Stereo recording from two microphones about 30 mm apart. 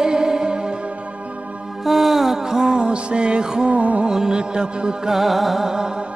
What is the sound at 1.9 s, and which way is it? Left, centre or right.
Music, centre.